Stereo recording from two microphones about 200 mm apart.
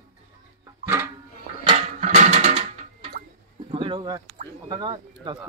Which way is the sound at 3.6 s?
25° right (ahead or behind).